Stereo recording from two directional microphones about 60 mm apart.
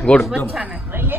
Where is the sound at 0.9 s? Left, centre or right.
Right.